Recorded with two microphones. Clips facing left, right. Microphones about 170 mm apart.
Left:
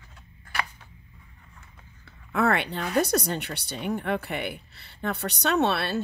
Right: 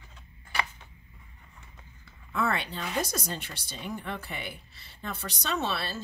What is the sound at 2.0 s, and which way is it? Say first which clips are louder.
Speech: left 6 dB; 60° left (ahead or behind).